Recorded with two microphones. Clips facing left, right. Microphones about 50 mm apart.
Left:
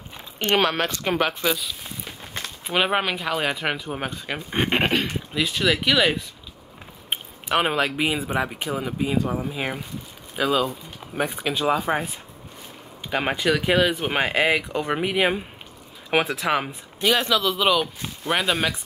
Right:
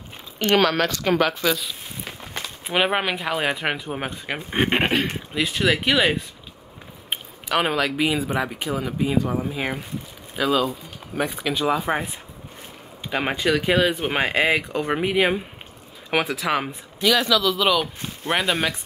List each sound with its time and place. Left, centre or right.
0.4 s speech: left
2.6 s speech: centre
7.4 s speech: centre
11.8 s speech: centre
13.1 s speech: centre
17.0 s a man's voice: left
17.6 s speech: centre
18.3 s speech: centre